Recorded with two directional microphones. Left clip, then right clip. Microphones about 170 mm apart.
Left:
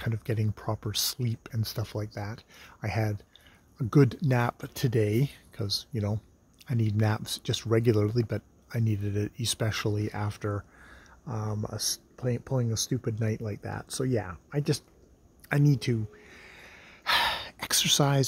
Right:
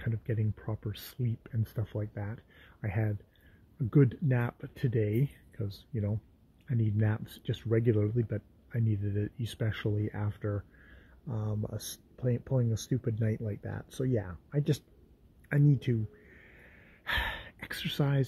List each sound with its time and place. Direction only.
0.0 s speech: 15° left (ahead or behind)
15.4 s gasp: 20° left (ahead or behind)